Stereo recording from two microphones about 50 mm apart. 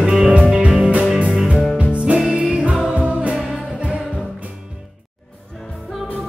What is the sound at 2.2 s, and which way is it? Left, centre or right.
Music, centre.